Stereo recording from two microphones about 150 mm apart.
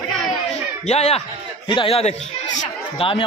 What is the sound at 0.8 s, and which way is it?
Speech, 45° left (ahead or behind).